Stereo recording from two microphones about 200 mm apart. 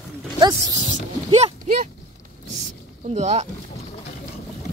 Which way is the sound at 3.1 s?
35° right (ahead or behind).